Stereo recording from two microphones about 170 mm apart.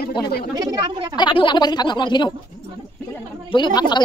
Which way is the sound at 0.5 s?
25° right (ahead or behind).